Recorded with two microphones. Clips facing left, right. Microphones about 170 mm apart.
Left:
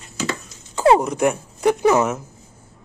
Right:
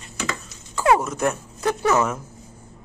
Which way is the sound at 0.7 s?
25° left (ahead or behind).